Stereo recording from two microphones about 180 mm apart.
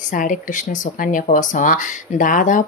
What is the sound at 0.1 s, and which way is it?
Speech, 45° left (ahead or behind).